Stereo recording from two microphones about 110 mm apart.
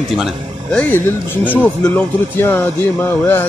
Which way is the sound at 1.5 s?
15° left (ahead or behind).